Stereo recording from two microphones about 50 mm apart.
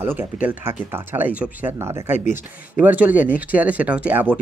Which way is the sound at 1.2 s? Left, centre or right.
Right.